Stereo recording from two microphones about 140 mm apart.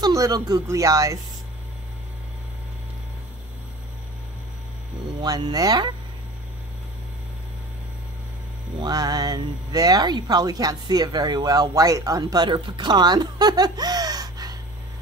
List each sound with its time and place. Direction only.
0.0 s speech: 25° right (ahead or behind)
5.2 s speech: 30° right (ahead or behind)
8.8 s speech: 30° right (ahead or behind)